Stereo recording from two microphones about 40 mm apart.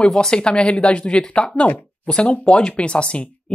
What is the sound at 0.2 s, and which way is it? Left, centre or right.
Speech, left.